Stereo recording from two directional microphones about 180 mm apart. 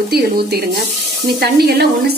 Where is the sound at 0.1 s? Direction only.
65° right (ahead or behind).